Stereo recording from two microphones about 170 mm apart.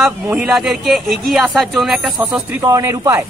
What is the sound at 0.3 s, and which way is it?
Speech, 5° right (ahead or behind).